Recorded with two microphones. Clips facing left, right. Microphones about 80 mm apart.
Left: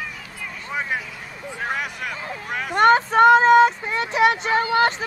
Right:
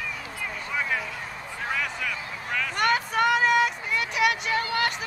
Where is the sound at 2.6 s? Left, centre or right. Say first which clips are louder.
Left 10 dB; left.